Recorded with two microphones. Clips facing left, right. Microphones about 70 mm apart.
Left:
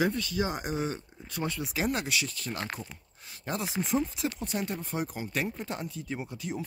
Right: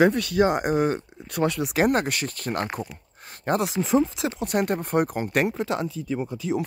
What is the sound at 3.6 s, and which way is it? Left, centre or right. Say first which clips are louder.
Speech: right 6 dB; right.